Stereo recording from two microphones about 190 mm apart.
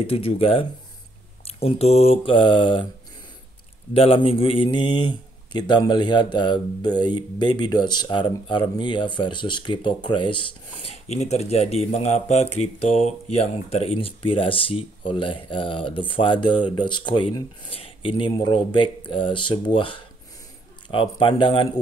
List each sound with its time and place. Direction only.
0.0 s a man's voice: 30° left (ahead or behind)
3.9 s a man's voice: 30° left (ahead or behind)